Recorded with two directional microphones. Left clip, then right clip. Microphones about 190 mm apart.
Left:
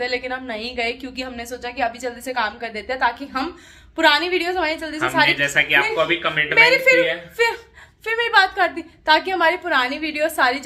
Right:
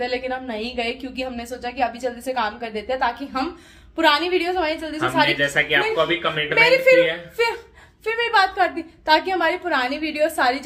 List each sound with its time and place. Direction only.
0.0 s a woman's voice: 5° left (ahead or behind)
5.4 s speech: 15° right (ahead or behind)
6.5 s a woman's voice: centre (ahead or behind)